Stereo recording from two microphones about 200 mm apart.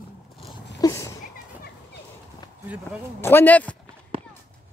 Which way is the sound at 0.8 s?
15° left (ahead or behind).